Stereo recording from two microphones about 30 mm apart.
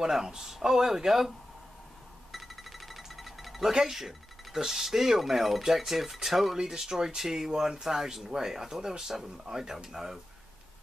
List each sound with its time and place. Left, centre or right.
0.0 s speech: centre
2.3 s music: centre
3.7 s speech: centre